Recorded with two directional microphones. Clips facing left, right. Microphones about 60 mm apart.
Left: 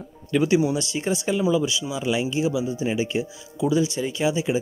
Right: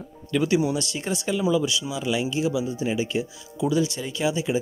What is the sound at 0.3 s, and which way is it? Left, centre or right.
Speech, centre.